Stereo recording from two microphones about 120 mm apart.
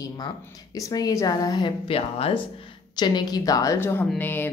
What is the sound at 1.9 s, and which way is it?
Speech, 55° left (ahead or behind).